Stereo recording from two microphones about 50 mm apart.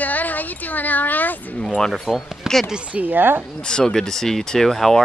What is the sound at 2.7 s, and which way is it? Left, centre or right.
Speech, right.